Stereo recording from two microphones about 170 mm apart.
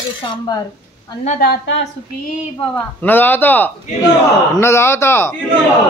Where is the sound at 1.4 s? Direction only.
80° left.